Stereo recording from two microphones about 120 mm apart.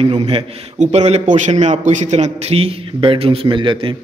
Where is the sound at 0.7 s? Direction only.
65° right (ahead or behind).